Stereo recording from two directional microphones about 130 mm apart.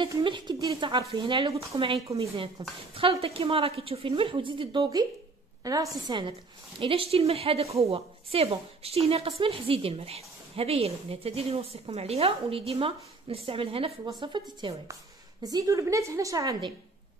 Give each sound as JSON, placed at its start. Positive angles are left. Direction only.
{"t": 0.2, "sound": "a woman's voice", "side_deg": -40}
{"t": 5.6, "sound": "a woman's voice", "side_deg": -30}